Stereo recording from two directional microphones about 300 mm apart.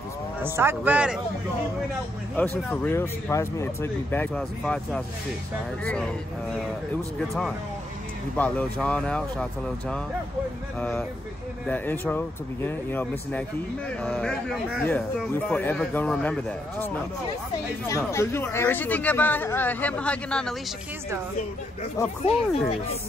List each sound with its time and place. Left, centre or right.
0.4 s speech: centre
2.7 s speech: centre
7.2 s speech: centre
21.9 s speech: left